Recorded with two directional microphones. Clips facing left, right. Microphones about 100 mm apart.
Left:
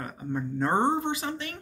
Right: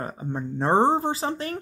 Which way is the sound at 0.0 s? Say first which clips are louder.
Right 2 dB; 30° right (ahead or behind).